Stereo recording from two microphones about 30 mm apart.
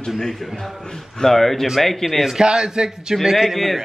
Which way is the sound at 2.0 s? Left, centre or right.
Centre.